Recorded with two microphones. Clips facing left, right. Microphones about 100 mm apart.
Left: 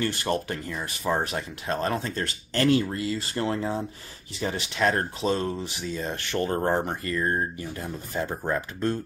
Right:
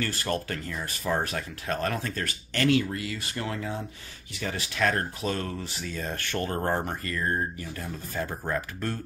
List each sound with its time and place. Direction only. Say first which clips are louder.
0.0 s speech: left 3 dB; 20° left (ahead or behind)